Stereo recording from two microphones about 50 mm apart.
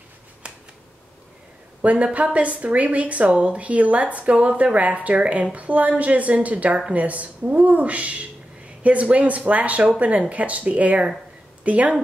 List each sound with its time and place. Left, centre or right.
1.8 s speech: right